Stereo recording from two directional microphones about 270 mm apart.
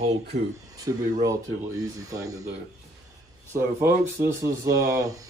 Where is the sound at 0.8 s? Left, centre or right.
Centre.